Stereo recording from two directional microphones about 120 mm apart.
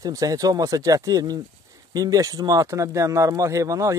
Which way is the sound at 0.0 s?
30° right (ahead or behind).